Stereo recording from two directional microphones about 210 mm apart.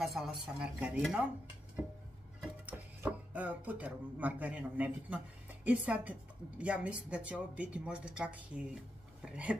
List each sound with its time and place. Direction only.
0.0 s speech: centre (ahead or behind)
2.4 s speech: 10° right (ahead or behind)